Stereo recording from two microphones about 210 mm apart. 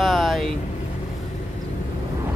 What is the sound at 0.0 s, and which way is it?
Vehicle, centre (ahead or behind).